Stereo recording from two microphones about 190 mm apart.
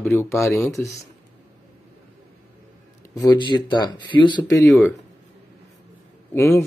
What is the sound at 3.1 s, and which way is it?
Speech, 20° left (ahead or behind).